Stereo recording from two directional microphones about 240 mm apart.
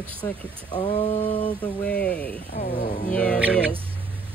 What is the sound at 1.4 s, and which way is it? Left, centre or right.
Speech, centre.